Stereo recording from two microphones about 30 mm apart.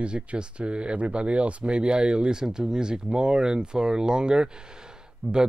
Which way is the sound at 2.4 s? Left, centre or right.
Centre.